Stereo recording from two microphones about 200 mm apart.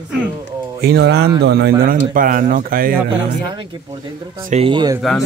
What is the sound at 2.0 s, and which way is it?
Speech, 45° right (ahead or behind).